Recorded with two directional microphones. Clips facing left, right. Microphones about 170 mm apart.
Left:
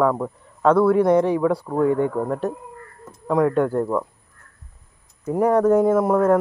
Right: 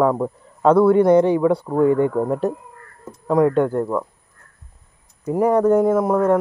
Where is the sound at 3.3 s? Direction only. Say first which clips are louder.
Right 2 dB; centre (ahead or behind).